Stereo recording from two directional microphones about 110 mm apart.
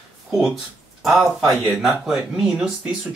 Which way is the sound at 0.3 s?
Centre (ahead or behind).